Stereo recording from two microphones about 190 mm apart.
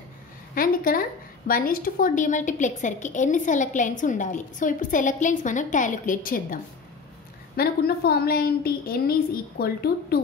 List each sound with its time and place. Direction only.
0.6 s a woman's voice: 50° left (ahead or behind)